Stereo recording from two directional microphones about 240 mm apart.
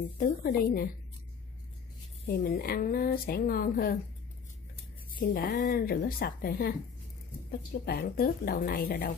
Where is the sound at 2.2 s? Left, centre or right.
Left.